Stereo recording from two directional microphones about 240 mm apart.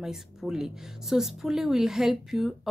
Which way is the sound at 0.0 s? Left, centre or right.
Centre.